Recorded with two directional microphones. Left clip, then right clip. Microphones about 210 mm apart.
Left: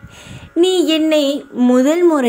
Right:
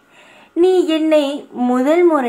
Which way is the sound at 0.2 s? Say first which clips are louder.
Even; 40° left (ahead or behind).